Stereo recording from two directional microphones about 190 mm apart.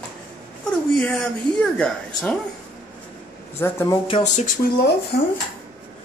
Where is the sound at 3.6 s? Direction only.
10° left (ahead or behind).